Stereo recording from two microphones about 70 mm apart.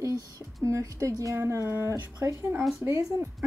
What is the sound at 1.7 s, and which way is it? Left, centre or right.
Speech, right.